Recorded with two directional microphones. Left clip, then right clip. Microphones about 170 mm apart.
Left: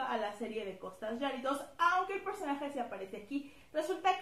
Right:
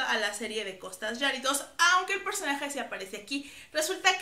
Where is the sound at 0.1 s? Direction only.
15° right (ahead or behind).